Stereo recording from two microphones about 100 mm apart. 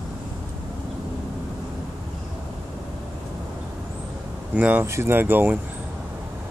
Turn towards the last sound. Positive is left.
turn(degrees=-20)  # may be behind; listen again after turning